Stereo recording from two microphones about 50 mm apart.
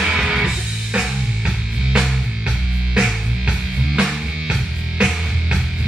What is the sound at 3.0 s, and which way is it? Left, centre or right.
Music, centre.